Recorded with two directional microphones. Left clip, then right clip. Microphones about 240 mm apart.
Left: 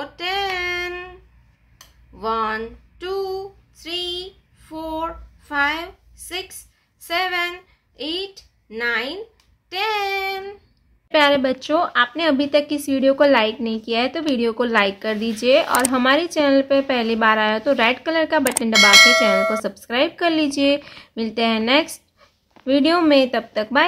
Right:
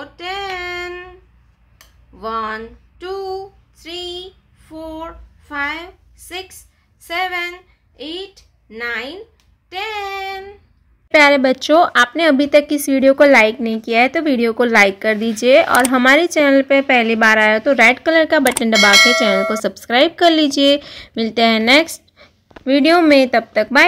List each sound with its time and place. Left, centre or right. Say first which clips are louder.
0.0 s female singing: left 2 dB; centre
2.1 s a sound: even; centre
9.7 s speech: left 2 dB; centre
11.1 s speech: right 5 dB; centre
18.7 s speech: even; centre
19.5 s speech: right 6 dB; right